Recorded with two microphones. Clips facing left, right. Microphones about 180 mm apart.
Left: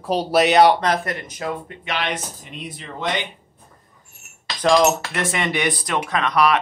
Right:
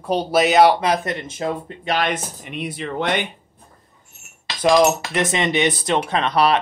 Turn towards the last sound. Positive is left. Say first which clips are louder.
# right 1 dB
turn(degrees=-30)  # may be behind; listen again after turning